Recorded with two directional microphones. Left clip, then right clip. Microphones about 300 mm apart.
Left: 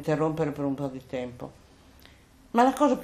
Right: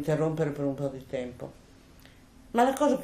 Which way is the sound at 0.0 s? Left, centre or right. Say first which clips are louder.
Left 1 dB; centre.